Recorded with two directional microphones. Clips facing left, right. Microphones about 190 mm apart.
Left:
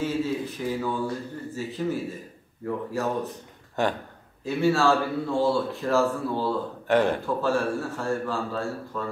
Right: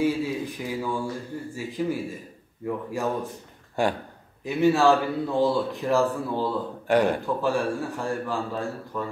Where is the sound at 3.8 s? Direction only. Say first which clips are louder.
Right 1 dB; 10° right (ahead or behind).